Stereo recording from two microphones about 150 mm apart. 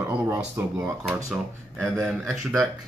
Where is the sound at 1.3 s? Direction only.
5° left (ahead or behind).